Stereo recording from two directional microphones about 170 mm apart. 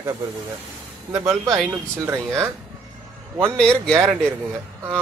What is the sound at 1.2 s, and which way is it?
Speech, centre (ahead or behind).